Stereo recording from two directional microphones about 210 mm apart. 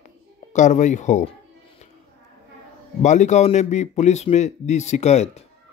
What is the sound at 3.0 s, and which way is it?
Speech, 35° left (ahead or behind).